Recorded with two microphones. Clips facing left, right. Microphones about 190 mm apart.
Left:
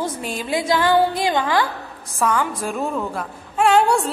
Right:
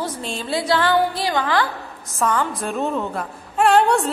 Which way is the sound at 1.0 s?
20° left (ahead or behind).